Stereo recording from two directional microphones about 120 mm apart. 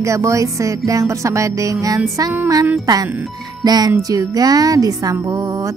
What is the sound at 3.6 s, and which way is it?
Music, 35° right (ahead or behind).